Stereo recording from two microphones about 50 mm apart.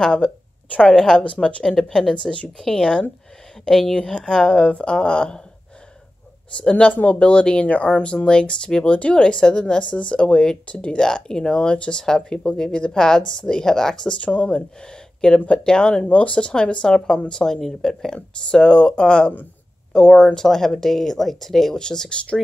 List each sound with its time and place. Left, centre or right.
0.0 s a woman's voice: left
0.8 s speech: centre
1.2 s speech: left
1.6 s speech: centre
4.6 s speech: left
6.6 s speech: left
6.9 s speech: left
7.2 s speech: left
14.1 s speech: left